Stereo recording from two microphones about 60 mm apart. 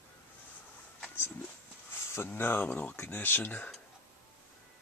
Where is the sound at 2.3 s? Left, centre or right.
Left.